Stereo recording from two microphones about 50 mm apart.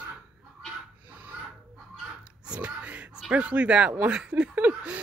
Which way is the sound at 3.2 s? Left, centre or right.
Right.